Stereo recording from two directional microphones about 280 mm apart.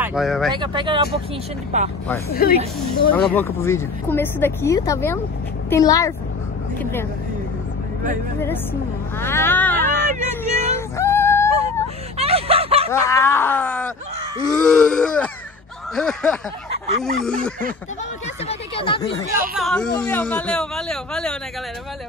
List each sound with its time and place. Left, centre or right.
0.0 s speech: centre
0.5 s speech: centre
2.2 s speech: left
3.1 s speech: centre
9.2 s a sound: centre
12.2 s a sound: right
12.9 s a man's voice: centre
18.5 s a sound: centre
18.9 s speech: left
19.5 s a man's voice: centre